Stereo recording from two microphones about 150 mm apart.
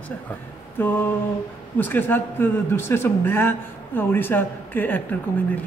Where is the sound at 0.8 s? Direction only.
15° left (ahead or behind).